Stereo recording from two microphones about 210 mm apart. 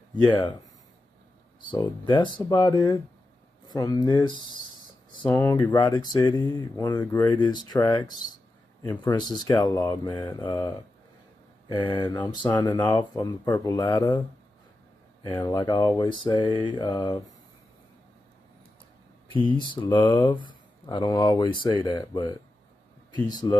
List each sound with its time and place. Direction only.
1.7 s speech: 20° left (ahead or behind)
5.1 s a sound: 20° left (ahead or behind)
5.6 s speech: 20° left (ahead or behind)
11.7 s speech: 20° left (ahead or behind)
15.2 s speech: 20° left (ahead or behind)
19.5 s speech: 20° left (ahead or behind)